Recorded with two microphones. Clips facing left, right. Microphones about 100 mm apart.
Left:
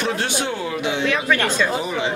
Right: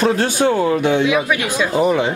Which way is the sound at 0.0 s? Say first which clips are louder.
Right 7 dB; 40° right (ahead or behind).